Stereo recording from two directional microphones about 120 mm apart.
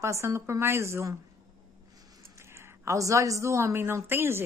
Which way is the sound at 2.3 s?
20° right (ahead or behind).